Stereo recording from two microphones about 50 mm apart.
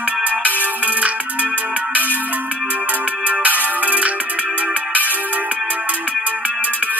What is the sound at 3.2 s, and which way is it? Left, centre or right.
Music, right.